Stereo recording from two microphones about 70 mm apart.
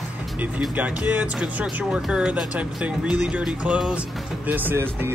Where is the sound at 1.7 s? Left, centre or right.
Centre.